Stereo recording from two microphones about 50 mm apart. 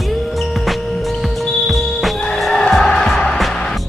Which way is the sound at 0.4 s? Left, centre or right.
Centre.